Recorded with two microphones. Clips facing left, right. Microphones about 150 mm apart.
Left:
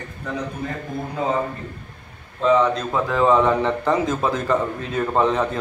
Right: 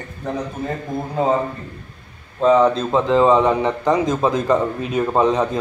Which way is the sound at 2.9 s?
25° right (ahead or behind).